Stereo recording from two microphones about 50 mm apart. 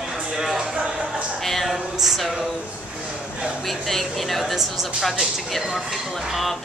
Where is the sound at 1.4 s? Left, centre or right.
Centre.